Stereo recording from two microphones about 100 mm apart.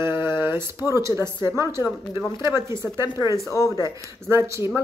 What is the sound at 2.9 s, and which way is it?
Speech, 45° left (ahead or behind).